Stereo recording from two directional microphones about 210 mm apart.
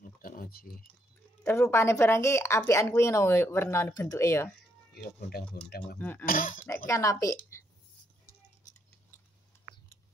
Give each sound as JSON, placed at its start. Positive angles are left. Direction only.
{"t": 0.0, "sound": "a sound", "side_deg": 40}
{"t": 1.4, "sound": "speech", "side_deg": 10}
{"t": 5.7, "sound": "speech", "side_deg": 45}
{"t": 5.9, "sound": "speech", "side_deg": 10}
{"t": 6.2, "sound": "speech", "side_deg": 40}
{"t": 6.9, "sound": "speech", "side_deg": 15}